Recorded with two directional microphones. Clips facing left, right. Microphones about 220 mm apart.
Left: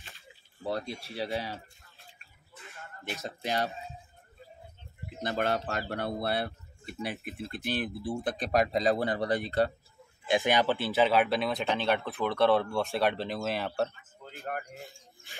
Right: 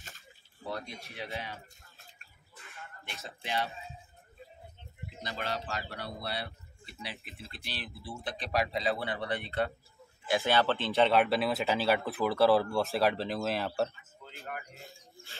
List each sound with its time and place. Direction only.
0.7 s speech: 30° left (ahead or behind)
2.8 s speech: 40° left (ahead or behind)
5.2 s a man's voice: 55° left (ahead or behind); by 9.7 s 40° left (ahead or behind)
10.2 s speech: 20° left (ahead or behind); by 13.9 s centre (ahead or behind)
14.2 s a sound: 45° left (ahead or behind)